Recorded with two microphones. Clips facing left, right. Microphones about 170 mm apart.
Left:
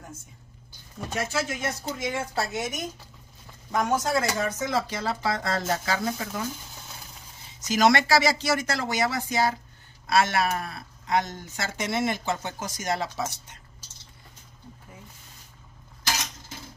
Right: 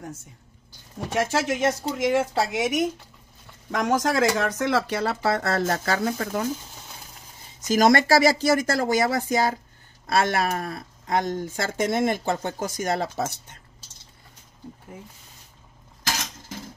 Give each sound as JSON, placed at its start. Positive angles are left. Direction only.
{"t": 1.1, "sound": "speech", "side_deg": -90}
{"t": 7.6, "sound": "speech", "side_deg": -45}